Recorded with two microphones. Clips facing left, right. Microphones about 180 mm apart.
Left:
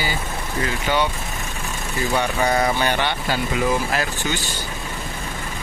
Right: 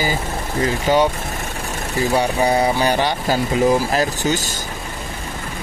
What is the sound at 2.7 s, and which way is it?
Speech, 35° right (ahead or behind).